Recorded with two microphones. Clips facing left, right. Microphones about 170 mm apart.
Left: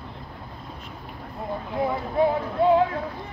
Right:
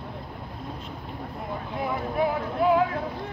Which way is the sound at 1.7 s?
25° left (ahead or behind).